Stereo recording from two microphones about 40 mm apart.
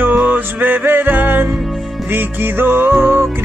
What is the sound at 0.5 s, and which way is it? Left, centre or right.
Music, right.